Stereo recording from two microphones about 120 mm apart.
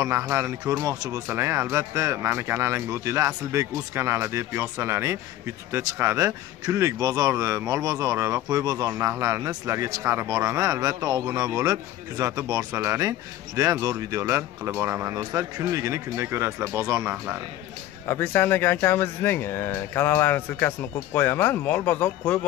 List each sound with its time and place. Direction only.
0.0 s speech: 20° right (ahead or behind)
18.0 s speech: 20° left (ahead or behind)